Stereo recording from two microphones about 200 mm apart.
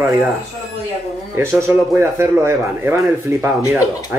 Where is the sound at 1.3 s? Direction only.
15° right (ahead or behind).